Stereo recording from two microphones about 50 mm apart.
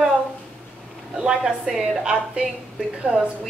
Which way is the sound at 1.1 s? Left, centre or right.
Centre.